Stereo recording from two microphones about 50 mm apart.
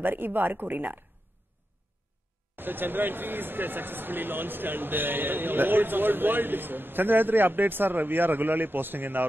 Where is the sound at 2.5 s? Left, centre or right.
Right.